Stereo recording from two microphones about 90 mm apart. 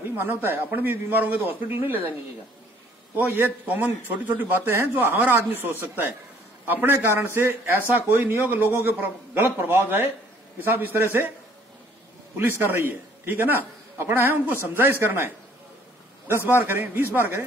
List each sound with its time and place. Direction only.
0.2 s a man's voice: 25° right (ahead or behind)
3.6 s a man's voice: 15° right (ahead or behind)
12.4 s a man's voice: 25° right (ahead or behind)